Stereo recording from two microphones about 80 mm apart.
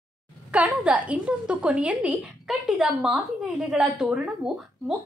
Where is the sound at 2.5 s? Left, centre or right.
Centre.